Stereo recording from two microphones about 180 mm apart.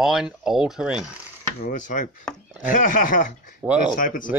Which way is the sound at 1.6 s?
45° left (ahead or behind).